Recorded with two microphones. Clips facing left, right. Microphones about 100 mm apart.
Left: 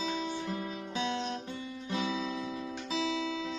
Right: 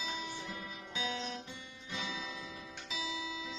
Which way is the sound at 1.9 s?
45° left (ahead or behind).